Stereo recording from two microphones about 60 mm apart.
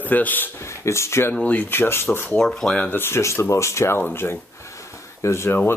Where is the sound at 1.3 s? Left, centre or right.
Left.